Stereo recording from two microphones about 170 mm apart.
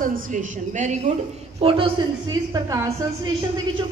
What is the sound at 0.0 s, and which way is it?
A woman's voice, 50° right (ahead or behind).